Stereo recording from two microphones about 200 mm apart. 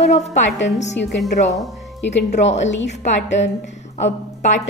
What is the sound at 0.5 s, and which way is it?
Speech, 60° left (ahead or behind).